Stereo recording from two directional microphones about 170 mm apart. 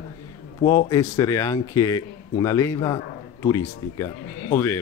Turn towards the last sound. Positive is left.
turn(degrees=15)  # may be behind; listen again after turning